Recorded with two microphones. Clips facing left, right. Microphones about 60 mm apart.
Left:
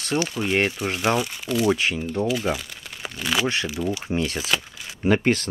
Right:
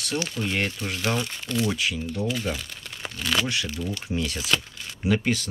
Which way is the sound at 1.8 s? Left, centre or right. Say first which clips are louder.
Left 4 dB; left.